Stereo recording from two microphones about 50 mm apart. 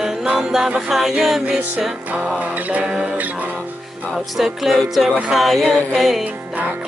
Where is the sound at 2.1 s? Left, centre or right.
Right.